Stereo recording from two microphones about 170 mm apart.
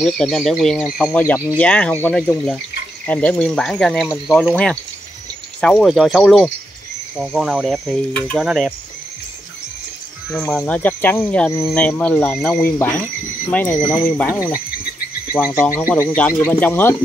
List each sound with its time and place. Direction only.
0.0 s speech: 5° left (ahead or behind)
1.1 s speech: 10° left (ahead or behind)
8.5 s speech: 5° right (ahead or behind)
10.3 s speech: 5° left (ahead or behind)